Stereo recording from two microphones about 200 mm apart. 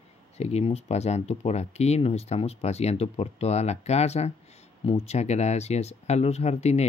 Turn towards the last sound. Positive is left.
turn(degrees=35)  # may be behind; listen again after turning